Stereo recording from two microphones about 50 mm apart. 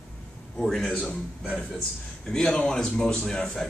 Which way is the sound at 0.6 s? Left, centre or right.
Centre.